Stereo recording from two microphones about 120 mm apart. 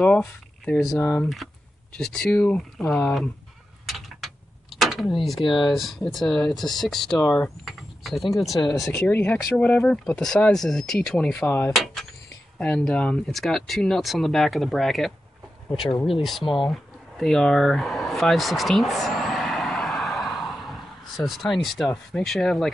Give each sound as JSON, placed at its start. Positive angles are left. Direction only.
{"t": 0.0, "sound": "speech", "side_deg": 10}
{"t": 2.0, "sound": "speech", "side_deg": 5}
{"t": 3.8, "sound": "mechanisms", "side_deg": 0}
{"t": 5.4, "sound": "speech", "side_deg": 40}
{"t": 5.7, "sound": "speech", "side_deg": 0}
{"t": 8.6, "sound": "speech", "side_deg": 30}
{"t": 8.9, "sound": "speech", "side_deg": 10}
{"t": 16.4, "sound": "speech", "side_deg": 40}
{"t": 17.2, "sound": "a sound", "side_deg": 0}